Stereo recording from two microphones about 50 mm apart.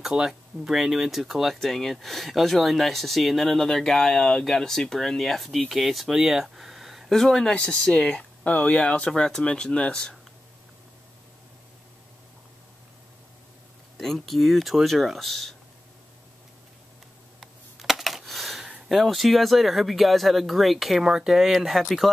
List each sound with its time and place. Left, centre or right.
0.0 s speech: centre
7.1 s speech: centre
7.5 s speech: centre
13.9 s speech: centre
17.4 s computer keyboard: centre
18.9 s speech: centre